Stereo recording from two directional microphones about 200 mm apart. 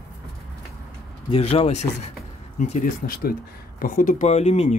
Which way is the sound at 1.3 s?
30° left (ahead or behind).